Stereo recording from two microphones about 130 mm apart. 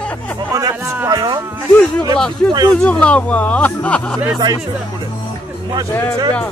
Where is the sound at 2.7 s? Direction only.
10° left (ahead or behind).